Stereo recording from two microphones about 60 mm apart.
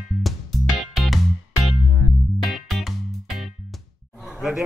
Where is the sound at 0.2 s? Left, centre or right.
Centre.